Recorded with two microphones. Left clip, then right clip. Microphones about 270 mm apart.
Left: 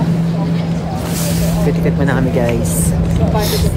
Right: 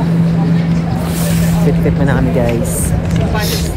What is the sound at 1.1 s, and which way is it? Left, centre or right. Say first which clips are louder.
Vehicle: even; centre.